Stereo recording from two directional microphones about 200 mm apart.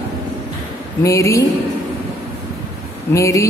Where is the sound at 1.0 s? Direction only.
15° left (ahead or behind).